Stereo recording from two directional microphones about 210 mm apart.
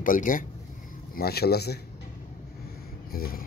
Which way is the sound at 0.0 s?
40° left (ahead or behind).